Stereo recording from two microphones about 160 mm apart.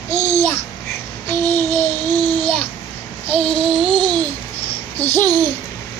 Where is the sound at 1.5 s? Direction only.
10° left (ahead or behind).